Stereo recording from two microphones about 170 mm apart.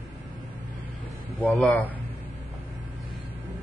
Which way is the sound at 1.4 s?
5° left (ahead or behind).